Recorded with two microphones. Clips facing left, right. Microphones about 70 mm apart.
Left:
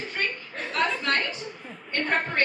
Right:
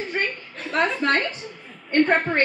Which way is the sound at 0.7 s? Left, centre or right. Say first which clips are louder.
Right 5 dB; right.